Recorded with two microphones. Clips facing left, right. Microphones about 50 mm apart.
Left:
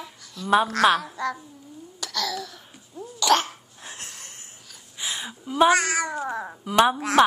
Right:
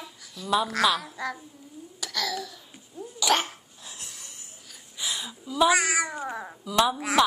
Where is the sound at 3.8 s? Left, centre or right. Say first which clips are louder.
Left 5 dB; left.